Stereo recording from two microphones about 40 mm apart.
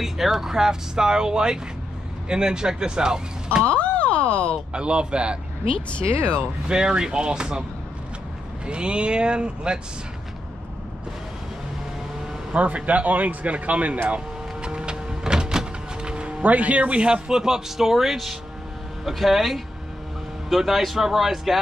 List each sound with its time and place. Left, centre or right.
0.0 s a man's voice: centre
3.6 s a sound: left
4.7 s speech: right
6.7 s speech: right
8.6 s speech: right
12.5 s a man's voice: right
14.0 s power windows: right
16.4 s a man's voice: right; by 21.5 s centre